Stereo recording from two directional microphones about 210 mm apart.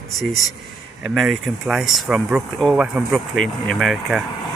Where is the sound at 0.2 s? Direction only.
Centre (ahead or behind).